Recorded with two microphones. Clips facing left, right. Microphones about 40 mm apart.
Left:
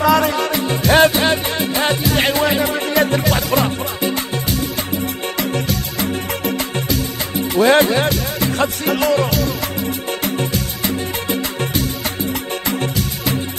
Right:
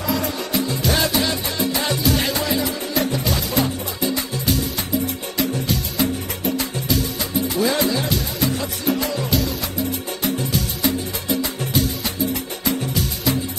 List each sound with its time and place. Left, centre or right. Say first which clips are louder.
0.0 s music: left 9 dB; left
2.9 s music: left 6 dB; left
5.4 s music: even; left
7.5 s music: left 9 dB; left